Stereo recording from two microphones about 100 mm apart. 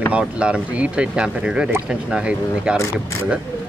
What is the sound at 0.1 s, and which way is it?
Speech, 10° right (ahead or behind).